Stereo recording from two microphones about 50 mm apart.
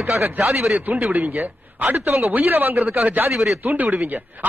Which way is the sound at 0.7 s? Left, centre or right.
Right.